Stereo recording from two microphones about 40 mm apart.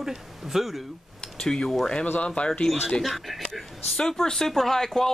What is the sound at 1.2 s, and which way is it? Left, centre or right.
Speech, centre.